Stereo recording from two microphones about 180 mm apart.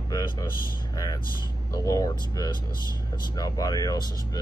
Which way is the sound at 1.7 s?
20° left (ahead or behind).